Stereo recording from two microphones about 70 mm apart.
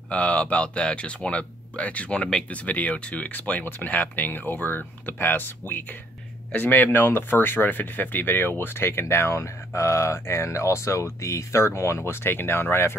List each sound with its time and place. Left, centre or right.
0.1 s speech: centre; by 12.9 s left